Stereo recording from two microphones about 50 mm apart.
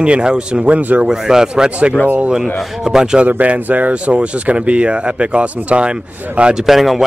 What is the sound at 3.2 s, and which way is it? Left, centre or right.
Speech, right.